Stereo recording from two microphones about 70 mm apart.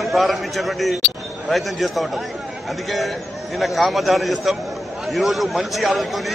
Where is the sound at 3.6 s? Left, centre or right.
Centre.